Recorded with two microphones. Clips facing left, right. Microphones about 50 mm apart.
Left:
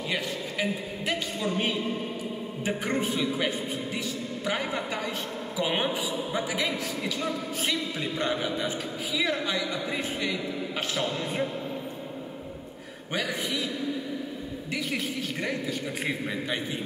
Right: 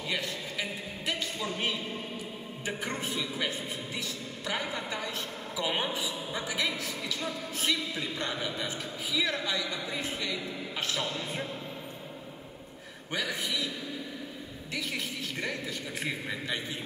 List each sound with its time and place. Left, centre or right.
2.6 s a man's voice: left
4.7 s a man's voice: left
6.3 s a man's voice: centre
8.0 s a man's voice: left
11.0 s a man's voice: centre